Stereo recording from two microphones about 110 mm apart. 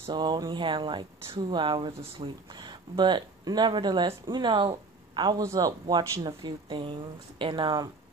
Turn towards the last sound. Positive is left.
turn(degrees=-45)  # may be behind; listen again after turning